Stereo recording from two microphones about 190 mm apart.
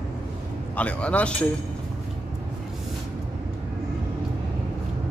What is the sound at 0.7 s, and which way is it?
Speech, 5° left (ahead or behind).